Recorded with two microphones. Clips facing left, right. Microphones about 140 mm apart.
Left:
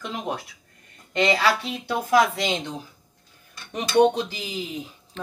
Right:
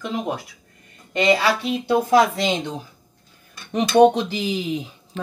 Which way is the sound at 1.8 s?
25° right (ahead or behind).